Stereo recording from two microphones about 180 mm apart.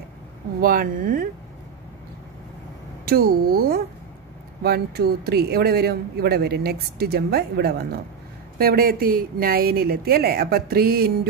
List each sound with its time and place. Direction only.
0.6 s speech: 55° right (ahead or behind)
3.1 s a man's voice: 55° right (ahead or behind)